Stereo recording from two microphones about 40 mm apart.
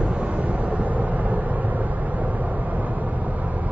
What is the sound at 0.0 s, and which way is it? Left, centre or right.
Vehicle, right.